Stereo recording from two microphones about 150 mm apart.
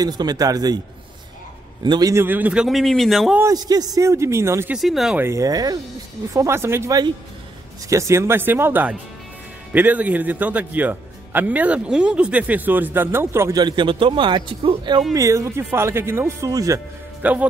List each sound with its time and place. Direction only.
0.0 s speech: 25° right (ahead or behind)
1.8 s a man's voice: 25° right (ahead or behind); by 3.3 s centre (ahead or behind)
3.3 s speech: 25° right (ahead or behind)
4.7 s a man's voice: centre (ahead or behind)
5.2 s a man's voice: 20° right (ahead or behind)
15.1 s speech: 20° right (ahead or behind)
17.2 s speech: 10° right (ahead or behind)